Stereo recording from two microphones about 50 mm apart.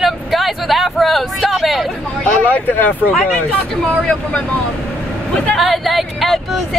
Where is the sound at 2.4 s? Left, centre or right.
Left.